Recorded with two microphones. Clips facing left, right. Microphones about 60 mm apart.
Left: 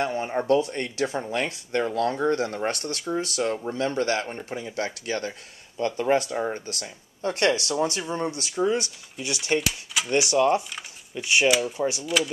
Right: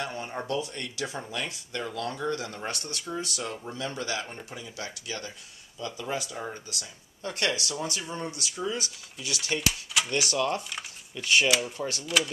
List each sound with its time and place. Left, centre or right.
0.0 s speech: left
9.6 s speech: centre
10.0 s speech: left
10.7 s squish: centre
11.4 s speech: centre
11.8 s speech: centre